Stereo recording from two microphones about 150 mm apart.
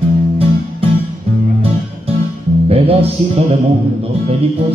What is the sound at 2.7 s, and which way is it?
Music, 40° right (ahead or behind).